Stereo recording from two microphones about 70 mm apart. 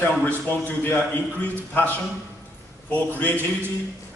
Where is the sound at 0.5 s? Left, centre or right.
Left.